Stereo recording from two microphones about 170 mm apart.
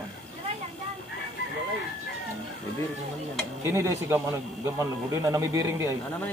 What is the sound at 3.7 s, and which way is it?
Speech, 15° right (ahead or behind).